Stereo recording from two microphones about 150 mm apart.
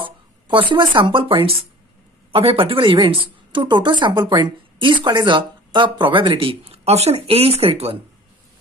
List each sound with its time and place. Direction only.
0.0 s speech: 35° right (ahead or behind)